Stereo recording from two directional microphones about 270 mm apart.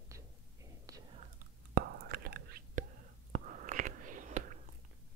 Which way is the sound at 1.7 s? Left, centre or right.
Right.